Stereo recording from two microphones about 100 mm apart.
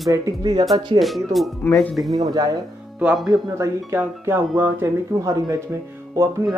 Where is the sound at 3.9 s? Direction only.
25° right (ahead or behind).